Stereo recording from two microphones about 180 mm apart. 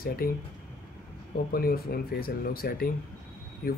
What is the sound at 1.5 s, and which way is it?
Speech, 55° left (ahead or behind).